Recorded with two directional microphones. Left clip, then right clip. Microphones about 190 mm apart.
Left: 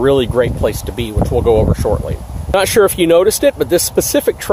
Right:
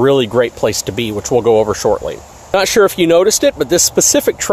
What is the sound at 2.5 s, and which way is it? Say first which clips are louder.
Speech: even; 5° right (ahead or behind).